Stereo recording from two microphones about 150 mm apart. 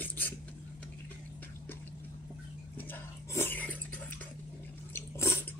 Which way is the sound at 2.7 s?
15° left (ahead or behind).